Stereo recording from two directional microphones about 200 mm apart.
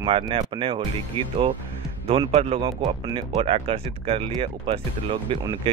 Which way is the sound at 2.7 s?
20° right (ahead or behind).